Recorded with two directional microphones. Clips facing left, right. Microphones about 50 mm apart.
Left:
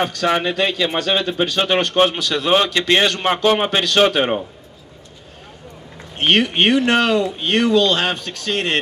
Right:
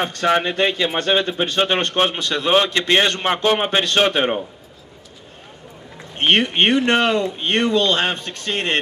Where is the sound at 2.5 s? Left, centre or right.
Centre.